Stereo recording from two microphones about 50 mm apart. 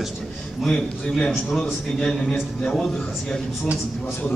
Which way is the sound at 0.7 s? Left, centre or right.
Centre.